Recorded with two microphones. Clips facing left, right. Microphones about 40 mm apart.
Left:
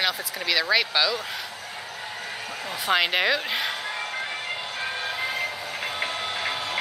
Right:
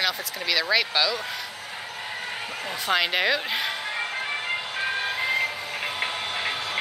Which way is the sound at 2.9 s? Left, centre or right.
Centre.